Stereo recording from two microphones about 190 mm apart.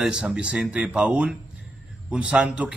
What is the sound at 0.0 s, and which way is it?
Speech, 5° right (ahead or behind).